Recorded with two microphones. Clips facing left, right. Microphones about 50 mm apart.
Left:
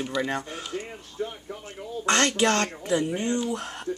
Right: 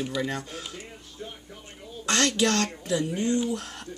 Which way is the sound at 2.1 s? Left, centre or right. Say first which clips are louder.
Left 2 dB; centre.